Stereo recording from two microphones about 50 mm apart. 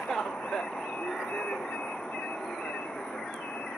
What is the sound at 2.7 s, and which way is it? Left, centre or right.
Vehicle, centre.